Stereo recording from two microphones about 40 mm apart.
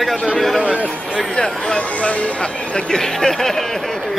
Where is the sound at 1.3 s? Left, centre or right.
Left.